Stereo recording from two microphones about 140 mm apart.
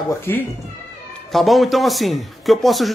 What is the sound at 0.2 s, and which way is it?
Speech, 15° left (ahead or behind).